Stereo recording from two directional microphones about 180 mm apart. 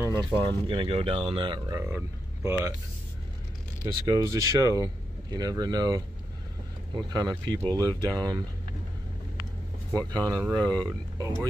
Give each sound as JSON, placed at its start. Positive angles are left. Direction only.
{"t": 0.0, "sound": "a sound", "side_deg": -20}
{"t": 0.4, "sound": "speech", "side_deg": -30}
{"t": 4.1, "sound": "speech", "side_deg": -20}
{"t": 7.1, "sound": "speech", "side_deg": -20}
{"t": 9.9, "sound": "speech", "side_deg": -20}